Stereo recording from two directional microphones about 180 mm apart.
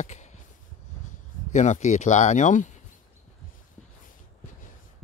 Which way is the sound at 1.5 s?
40° left (ahead or behind).